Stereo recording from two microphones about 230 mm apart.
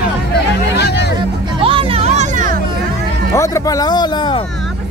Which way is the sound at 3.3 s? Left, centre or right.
Centre.